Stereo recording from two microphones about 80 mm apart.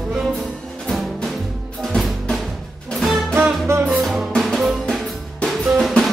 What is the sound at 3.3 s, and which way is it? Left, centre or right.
Music, right.